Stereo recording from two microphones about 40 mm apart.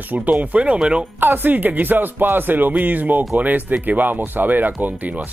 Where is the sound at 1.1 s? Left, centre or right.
Right.